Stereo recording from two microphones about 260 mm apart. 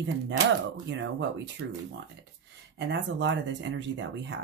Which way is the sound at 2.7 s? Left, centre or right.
Right.